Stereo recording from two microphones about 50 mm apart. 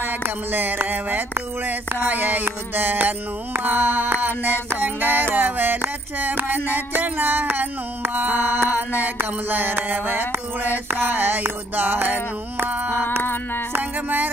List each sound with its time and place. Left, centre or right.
0.0 s music: right
6.1 s a sound: right
6.7 s music: right
9.2 s mantra: right
10.9 s music: right